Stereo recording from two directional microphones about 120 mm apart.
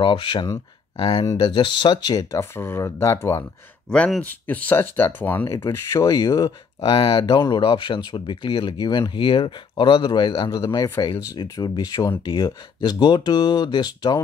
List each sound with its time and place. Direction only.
0.0 s speech: 40° left (ahead or behind); by 3.4 s 25° left (ahead or behind)
3.9 s speech: 10° left (ahead or behind); by 14.2 s 35° left (ahead or behind)